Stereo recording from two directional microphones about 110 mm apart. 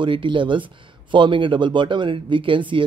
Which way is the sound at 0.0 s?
50° right (ahead or behind).